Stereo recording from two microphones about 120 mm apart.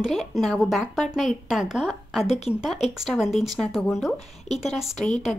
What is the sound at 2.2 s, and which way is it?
Speech, 65° left (ahead or behind).